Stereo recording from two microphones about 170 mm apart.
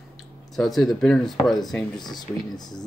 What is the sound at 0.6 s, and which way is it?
Speech, centre (ahead or behind).